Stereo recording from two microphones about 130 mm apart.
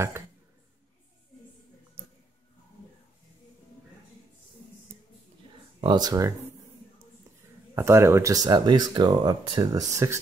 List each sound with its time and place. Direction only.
5.8 s speech: 35° right (ahead or behind)
7.7 s speech: 20° right (ahead or behind)